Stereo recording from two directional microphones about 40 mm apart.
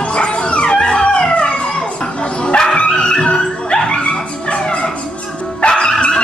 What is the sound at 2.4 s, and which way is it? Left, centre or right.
Dog, centre.